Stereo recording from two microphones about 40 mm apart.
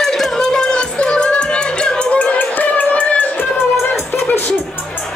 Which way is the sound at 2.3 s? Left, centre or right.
Left.